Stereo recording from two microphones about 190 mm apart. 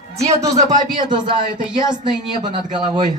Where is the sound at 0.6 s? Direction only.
25° right (ahead or behind).